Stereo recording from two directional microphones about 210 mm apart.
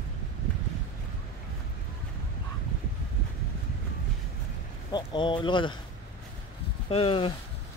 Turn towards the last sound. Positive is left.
turn(degrees=25)  # may be behind; listen again after turning